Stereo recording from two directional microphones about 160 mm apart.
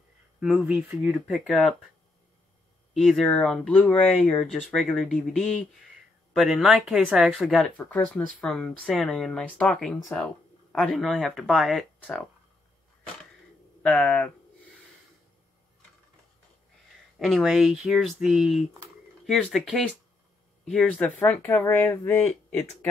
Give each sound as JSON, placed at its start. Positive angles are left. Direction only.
{"t": 0.4, "sound": "speech", "side_deg": -5}
{"t": 2.9, "sound": "speech", "side_deg": 0}
{"t": 13.8, "sound": "speech", "side_deg": 5}
{"t": 17.2, "sound": "speech", "side_deg": 0}